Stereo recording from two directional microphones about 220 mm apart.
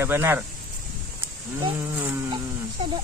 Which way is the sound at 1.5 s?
20° right (ahead or behind).